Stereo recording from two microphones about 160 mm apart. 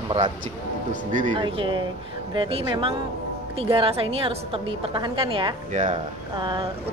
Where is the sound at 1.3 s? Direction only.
30° right (ahead or behind).